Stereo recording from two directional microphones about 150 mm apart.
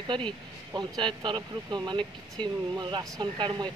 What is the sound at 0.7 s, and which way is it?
Speech, 30° right (ahead or behind).